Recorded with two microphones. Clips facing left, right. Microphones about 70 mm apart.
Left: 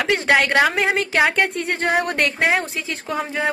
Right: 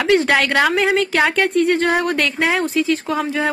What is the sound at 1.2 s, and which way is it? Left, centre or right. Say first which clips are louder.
Speech: left 1 dB; centre.